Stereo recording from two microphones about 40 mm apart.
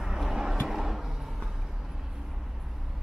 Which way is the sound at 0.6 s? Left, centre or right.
Centre.